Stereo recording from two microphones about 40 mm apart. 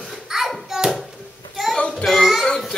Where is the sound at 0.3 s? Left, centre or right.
Centre.